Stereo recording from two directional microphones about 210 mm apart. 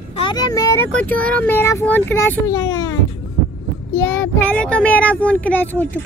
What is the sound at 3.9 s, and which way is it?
Speech, 10° left (ahead or behind).